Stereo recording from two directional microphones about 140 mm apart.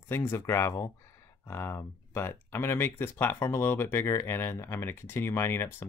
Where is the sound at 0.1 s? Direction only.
15° left (ahead or behind).